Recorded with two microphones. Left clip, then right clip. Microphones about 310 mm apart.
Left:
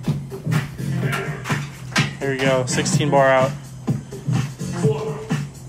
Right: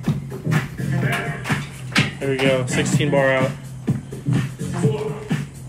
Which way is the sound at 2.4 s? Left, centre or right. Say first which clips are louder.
Left 1 dB; centre.